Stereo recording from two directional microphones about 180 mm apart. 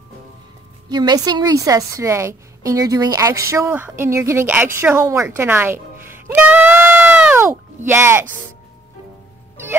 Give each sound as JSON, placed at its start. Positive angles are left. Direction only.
{"t": 0.8, "sound": "a woman's voice", "side_deg": -25}